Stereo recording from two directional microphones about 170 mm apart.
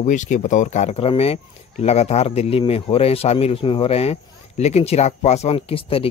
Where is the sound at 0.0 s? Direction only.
45° left (ahead or behind).